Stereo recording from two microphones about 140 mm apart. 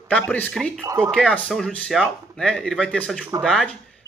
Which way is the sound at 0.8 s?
20° right (ahead or behind).